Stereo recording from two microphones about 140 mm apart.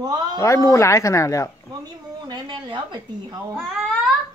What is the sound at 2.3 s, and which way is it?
A woman's voice, 35° right (ahead or behind).